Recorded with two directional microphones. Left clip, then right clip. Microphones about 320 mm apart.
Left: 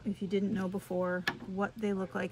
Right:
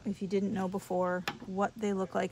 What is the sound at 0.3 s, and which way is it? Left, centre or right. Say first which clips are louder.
Speech: right 1 dB; right.